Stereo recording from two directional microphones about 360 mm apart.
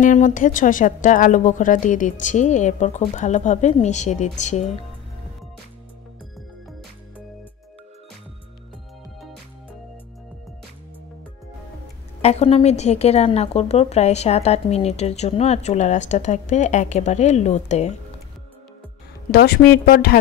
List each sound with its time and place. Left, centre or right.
0.0 s a woman's voice: left
12.2 s a woman's voice: centre
19.3 s a woman's voice: left